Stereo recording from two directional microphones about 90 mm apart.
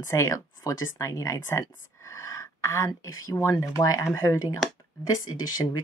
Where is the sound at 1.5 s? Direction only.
35° left (ahead or behind).